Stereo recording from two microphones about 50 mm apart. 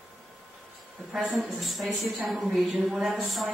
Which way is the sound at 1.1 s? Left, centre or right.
Centre.